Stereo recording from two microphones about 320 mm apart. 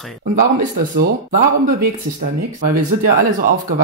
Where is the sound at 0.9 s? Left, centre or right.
Right.